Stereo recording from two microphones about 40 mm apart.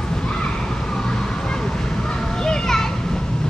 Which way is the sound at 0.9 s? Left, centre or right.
Centre.